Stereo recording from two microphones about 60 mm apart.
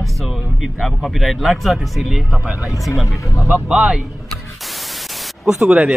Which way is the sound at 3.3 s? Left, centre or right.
Right.